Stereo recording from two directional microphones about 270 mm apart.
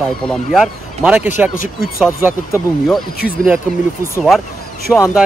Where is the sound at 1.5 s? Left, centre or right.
Left.